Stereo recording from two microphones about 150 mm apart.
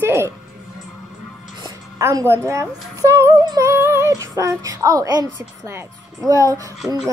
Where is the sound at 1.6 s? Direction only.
20° right (ahead or behind).